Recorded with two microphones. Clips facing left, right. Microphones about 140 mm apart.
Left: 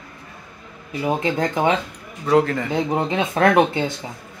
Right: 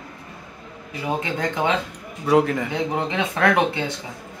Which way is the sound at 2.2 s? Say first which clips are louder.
Left 1 dB; 10° right (ahead or behind).